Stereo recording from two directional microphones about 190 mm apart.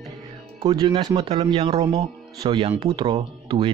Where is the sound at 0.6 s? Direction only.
20° right (ahead or behind).